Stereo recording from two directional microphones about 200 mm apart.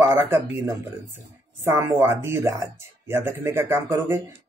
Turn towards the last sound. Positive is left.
turn(degrees=-10)  # may be behind; listen again after turning